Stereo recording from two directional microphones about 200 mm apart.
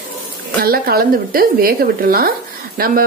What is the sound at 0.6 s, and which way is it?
Speech, 50° right (ahead or behind).